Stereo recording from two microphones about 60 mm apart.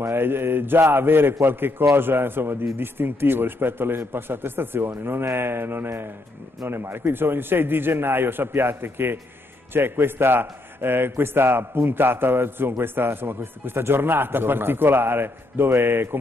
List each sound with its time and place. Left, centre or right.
0.0 s a man's voice: right